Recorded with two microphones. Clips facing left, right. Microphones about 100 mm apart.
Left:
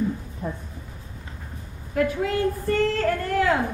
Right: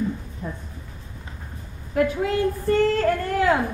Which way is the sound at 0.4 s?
45° left (ahead or behind).